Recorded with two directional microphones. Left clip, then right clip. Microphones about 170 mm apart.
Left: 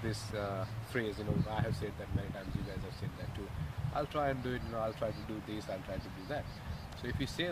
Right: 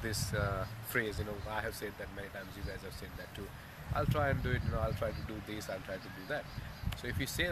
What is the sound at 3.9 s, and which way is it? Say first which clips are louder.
Speech: right 1 dB; 15° right (ahead or behind).